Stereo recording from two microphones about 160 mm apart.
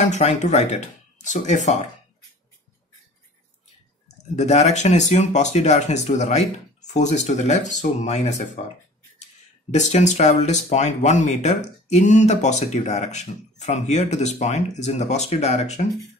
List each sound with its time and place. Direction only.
0.0 s speech: 45° left (ahead or behind)
4.4 s speech: 45° left (ahead or behind)